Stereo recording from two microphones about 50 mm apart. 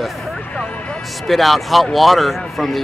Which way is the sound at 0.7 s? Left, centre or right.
Left.